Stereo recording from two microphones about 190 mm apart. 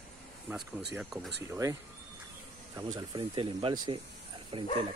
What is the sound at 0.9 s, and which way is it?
Speech, centre (ahead or behind).